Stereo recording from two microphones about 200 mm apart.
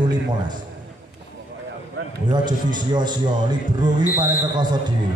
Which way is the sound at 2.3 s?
20° right (ahead or behind).